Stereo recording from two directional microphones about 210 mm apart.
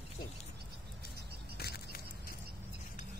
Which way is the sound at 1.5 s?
50° left (ahead or behind).